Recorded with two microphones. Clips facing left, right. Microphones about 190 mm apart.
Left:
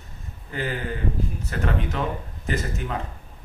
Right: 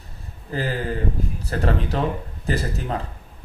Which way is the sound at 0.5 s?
35° right (ahead or behind).